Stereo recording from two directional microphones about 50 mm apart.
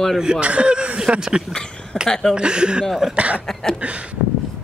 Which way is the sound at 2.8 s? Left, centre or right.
Centre.